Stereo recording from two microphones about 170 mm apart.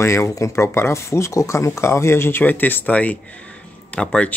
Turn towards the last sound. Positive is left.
turn(degrees=5)  # may be behind; listen again after turning